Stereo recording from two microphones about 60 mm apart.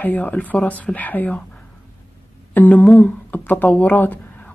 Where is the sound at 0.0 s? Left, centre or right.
Left.